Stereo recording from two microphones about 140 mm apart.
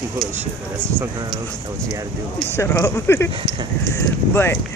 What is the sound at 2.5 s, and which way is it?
Speech, 20° left (ahead or behind).